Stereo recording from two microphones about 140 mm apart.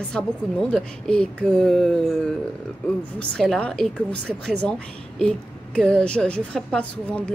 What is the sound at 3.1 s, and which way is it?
Speech, 5° left (ahead or behind).